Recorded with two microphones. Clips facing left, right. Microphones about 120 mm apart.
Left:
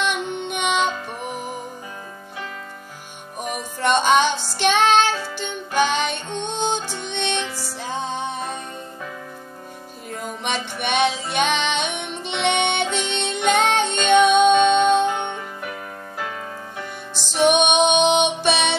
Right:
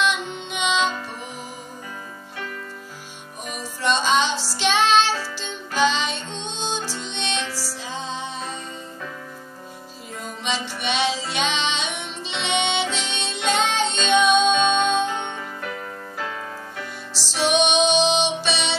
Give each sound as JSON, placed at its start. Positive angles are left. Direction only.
{"t": 0.0, "sound": "music", "side_deg": 55}
{"t": 3.8, "sound": "music", "side_deg": 55}
{"t": 7.3, "sound": "music", "side_deg": 20}
{"t": 7.8, "sound": "music", "side_deg": 55}
{"t": 10.4, "sound": "music", "side_deg": 55}
{"t": 12.8, "sound": "music", "side_deg": 15}
{"t": 13.1, "sound": "music", "side_deg": 55}
{"t": 15.0, "sound": "music", "side_deg": 15}
{"t": 17.3, "sound": "music", "side_deg": 55}